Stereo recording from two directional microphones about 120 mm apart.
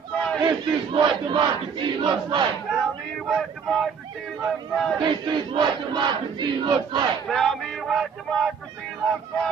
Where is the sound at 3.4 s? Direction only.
Centre (ahead or behind).